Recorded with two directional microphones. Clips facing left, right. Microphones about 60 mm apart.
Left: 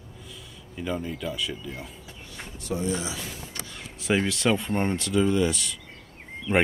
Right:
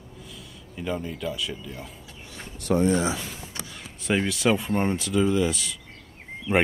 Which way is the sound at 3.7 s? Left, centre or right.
Centre.